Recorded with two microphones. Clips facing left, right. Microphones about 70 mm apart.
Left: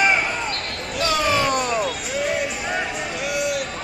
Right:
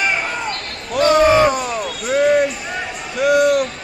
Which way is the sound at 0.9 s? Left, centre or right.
Right.